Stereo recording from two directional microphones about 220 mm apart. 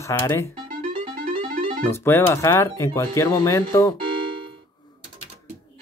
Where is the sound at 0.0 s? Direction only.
10° left (ahead or behind).